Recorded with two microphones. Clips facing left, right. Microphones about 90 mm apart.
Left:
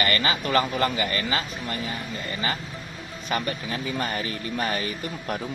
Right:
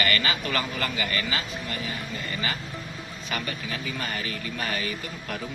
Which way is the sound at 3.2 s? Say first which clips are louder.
Left 5 dB; 35° left (ahead or behind).